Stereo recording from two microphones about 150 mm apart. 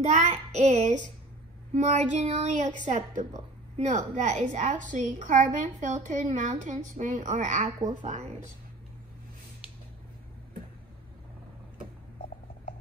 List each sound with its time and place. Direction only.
0.0 s a woman's voice: 50° right (ahead or behind)